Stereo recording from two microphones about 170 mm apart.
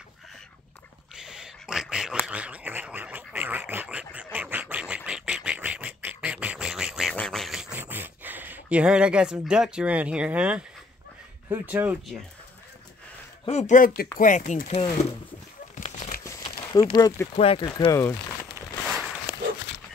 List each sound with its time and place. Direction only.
1.1 s a sound: 5° right (ahead or behind)
11.4 s speech: 15° right (ahead or behind)
13.5 s speech: 45° left (ahead or behind)
15.7 s crumpling: 45° left (ahead or behind)
16.3 s a sound: 20° left (ahead or behind)
17.4 s speech: 35° left (ahead or behind)
17.6 s speech: 20° left (ahead or behind)